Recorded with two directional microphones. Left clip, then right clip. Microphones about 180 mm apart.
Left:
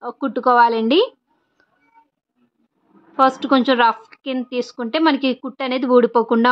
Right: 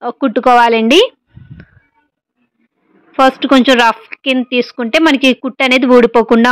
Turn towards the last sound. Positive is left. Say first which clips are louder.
# right 7 dB
turn(degrees=-25)  # may be behind; listen again after turning